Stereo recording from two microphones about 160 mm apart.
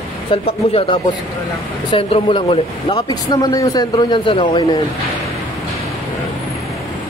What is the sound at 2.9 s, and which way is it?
A man's voice, 25° left (ahead or behind).